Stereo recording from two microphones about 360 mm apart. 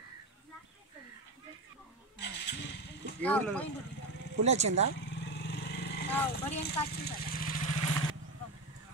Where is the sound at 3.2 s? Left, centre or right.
Centre.